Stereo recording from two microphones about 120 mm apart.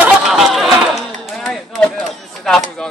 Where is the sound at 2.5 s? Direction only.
5° left (ahead or behind).